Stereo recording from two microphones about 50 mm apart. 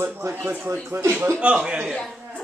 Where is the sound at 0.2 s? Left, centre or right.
Right.